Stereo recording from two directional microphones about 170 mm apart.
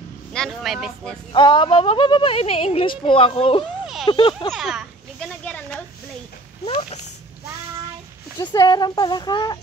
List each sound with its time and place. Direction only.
0.3 s speech: centre (ahead or behind)
1.3 s a woman's voice: 30° left (ahead or behind)
4.5 s children playing: 5° right (ahead or behind)
6.6 s a woman's voice: 35° left (ahead or behind)
8.4 s speech: 25° left (ahead or behind)